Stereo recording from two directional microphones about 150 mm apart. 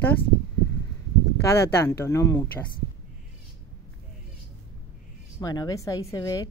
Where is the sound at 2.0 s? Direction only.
20° left (ahead or behind).